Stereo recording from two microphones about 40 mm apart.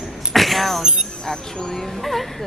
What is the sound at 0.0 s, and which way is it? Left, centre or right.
Vehicle, centre.